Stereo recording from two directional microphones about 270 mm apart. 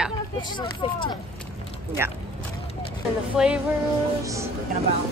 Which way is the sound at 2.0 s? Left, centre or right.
Centre.